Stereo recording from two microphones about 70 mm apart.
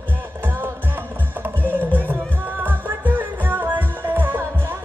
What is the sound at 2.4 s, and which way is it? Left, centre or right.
Music, right.